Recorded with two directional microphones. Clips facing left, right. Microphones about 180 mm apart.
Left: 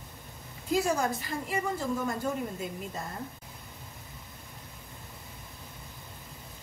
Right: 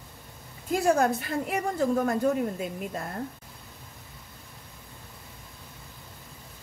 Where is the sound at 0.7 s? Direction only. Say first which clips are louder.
Right 4 dB; 55° right (ahead or behind).